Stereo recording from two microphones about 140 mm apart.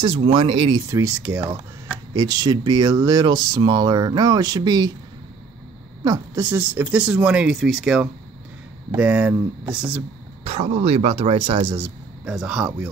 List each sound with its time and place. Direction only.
0.3 s speech: 40° right (ahead or behind)
0.8 s speech: 20° right (ahead or behind)
2.1 s speech: 30° right (ahead or behind)
6.0 s speech: 20° right (ahead or behind)
10.4 s speech: 50° right (ahead or behind)
12.3 s speech: 5° right (ahead or behind)